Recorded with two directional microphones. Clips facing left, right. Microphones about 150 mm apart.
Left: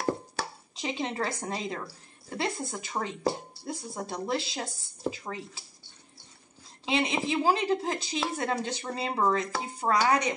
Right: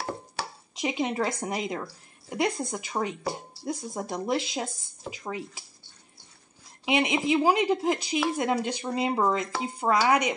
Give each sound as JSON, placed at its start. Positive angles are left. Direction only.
{"t": 0.7, "sound": "speech", "side_deg": -15}
{"t": 6.9, "sound": "speech", "side_deg": -15}